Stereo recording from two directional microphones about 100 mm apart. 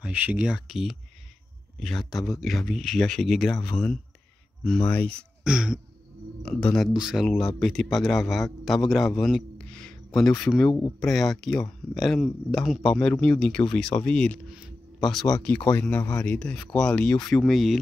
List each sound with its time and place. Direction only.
0.0 s speech: 15° right (ahead or behind); by 5.1 s 15° left (ahead or behind)
5.4 s throat clearing: 10° right (ahead or behind)
6.4 s speech: 10° left (ahead or behind)
6.9 s speech: 5° right (ahead or behind)
9.1 s a sound: 5° left (ahead or behind)
10.4 s speech: 5° left (ahead or behind)
14.5 s a sound: centre (ahead or behind)
15.4 s speech: 20° left (ahead or behind)
17.3 s speech: centre (ahead or behind)